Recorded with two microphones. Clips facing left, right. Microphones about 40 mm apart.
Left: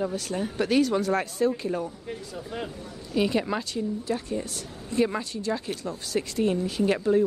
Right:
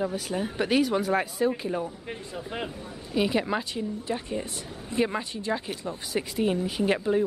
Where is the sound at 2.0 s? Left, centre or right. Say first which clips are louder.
Even; right.